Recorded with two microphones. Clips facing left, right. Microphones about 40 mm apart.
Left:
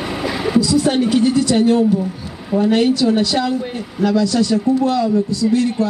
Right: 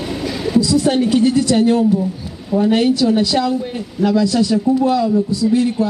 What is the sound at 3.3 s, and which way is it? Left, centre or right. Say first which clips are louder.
Speech: right 1 dB; centre.